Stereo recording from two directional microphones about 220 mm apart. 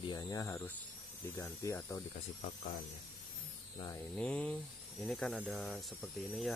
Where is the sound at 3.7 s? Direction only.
15° left (ahead or behind).